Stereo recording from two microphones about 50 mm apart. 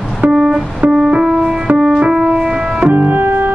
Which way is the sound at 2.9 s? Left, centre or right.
Right.